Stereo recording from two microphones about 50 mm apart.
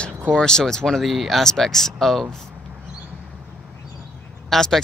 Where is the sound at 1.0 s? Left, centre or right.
Centre.